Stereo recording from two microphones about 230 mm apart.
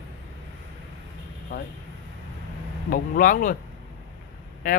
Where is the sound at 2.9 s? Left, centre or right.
Left.